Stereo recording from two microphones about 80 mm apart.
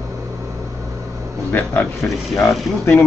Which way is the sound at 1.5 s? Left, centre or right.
Left.